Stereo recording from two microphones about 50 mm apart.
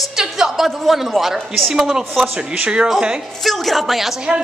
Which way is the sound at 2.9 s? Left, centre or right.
Centre.